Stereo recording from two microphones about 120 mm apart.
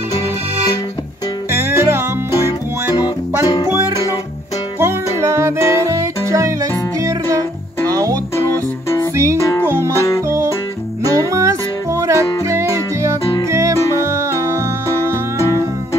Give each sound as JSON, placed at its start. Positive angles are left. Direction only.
{"t": 1.6, "sound": "music", "side_deg": -20}
{"t": 3.4, "sound": "music", "side_deg": 30}
{"t": 4.7, "sound": "music", "side_deg": -25}
{"t": 9.4, "sound": "music", "side_deg": 25}
{"t": 9.7, "sound": "music", "side_deg": -20}
{"t": 9.9, "sound": "music", "side_deg": 25}
{"t": 11.1, "sound": "music", "side_deg": -30}